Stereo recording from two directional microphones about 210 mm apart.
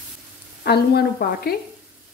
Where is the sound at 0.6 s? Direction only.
50° left (ahead or behind).